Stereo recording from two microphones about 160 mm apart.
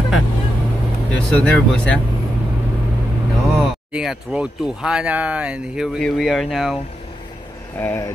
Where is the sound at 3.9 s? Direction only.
5° right (ahead or behind).